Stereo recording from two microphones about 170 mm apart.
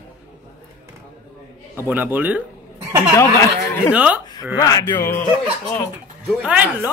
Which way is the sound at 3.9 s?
10° right (ahead or behind).